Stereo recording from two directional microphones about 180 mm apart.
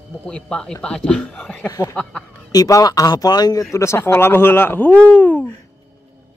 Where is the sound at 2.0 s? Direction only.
5° left (ahead or behind).